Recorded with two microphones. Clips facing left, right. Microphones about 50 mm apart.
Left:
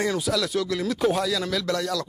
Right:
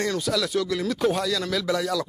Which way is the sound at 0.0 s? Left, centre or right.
Centre.